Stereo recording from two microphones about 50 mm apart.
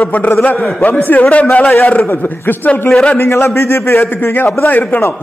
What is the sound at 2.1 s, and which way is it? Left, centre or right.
Speech, left.